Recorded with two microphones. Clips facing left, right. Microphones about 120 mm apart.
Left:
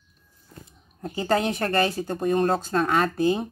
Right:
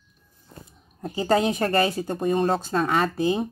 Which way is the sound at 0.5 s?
30° right (ahead or behind).